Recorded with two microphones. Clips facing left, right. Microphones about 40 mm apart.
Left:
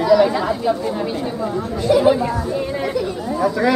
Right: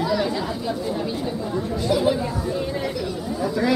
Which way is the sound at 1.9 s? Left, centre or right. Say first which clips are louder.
Left 7 dB; left.